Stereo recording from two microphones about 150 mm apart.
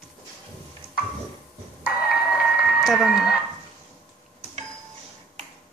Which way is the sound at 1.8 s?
Centre (ahead or behind).